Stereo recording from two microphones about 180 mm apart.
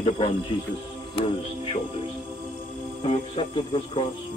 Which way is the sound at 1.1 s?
35° left (ahead or behind).